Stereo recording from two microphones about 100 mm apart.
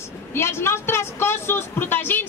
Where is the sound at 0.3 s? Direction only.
25° left (ahead or behind).